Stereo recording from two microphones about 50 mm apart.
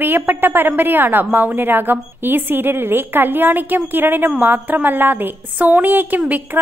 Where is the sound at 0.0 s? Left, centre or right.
Right.